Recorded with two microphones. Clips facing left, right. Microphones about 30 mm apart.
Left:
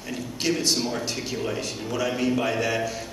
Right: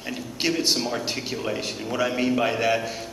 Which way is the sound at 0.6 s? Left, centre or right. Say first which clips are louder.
Right 1 dB; right.